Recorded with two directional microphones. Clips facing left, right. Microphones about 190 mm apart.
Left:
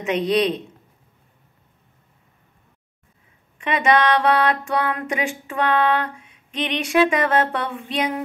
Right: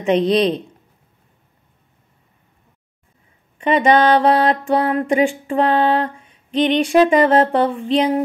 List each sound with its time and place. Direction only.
0.0 s music: 30° right (ahead or behind)
3.6 s music: 30° right (ahead or behind)